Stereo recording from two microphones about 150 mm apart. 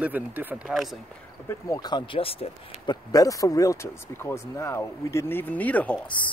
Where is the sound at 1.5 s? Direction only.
25° left (ahead or behind); by 3.0 s 40° left (ahead or behind).